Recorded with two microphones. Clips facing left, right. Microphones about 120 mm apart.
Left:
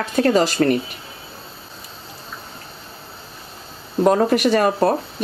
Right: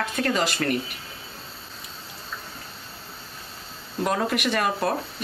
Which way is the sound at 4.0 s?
35° left (ahead or behind).